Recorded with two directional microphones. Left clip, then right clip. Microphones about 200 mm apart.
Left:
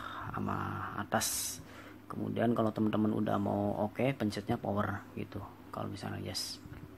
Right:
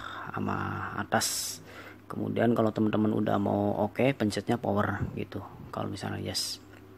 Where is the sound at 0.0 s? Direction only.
10° right (ahead or behind).